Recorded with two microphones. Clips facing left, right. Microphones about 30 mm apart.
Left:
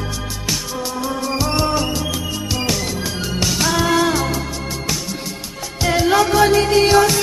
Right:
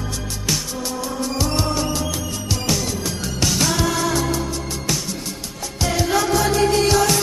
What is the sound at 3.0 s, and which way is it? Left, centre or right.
Music, left.